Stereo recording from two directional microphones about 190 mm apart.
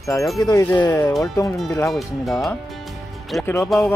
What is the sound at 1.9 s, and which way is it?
Speech, centre (ahead or behind).